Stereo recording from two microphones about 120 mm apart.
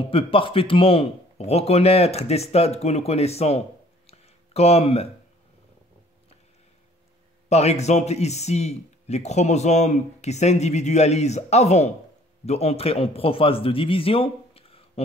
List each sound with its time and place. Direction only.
0.0 s speech: 50° left (ahead or behind)
4.1 s a sound: 60° left (ahead or behind)
7.4 s a man's voice: 65° left (ahead or behind)